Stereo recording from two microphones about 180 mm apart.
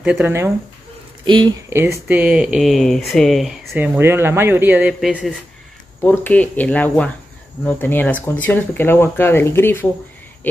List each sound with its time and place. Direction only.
0.0 s speech: 5° right (ahead or behind)
1.2 s speech: 25° right (ahead or behind)
1.7 s speech: 15° right (ahead or behind)
5.1 s speech: 5° left (ahead or behind)